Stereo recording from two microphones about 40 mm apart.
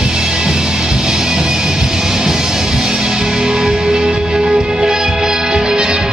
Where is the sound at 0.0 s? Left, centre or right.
Centre.